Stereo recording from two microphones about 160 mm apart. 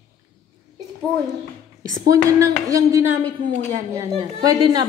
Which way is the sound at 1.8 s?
20° right (ahead or behind).